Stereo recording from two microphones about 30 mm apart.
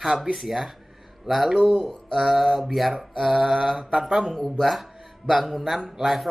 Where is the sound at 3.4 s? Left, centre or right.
Centre.